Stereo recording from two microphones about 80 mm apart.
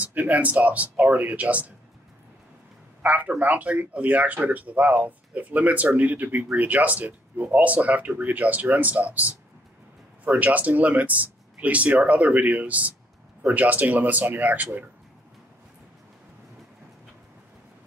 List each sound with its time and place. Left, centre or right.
0.0 s speech: right
3.0 s speech: centre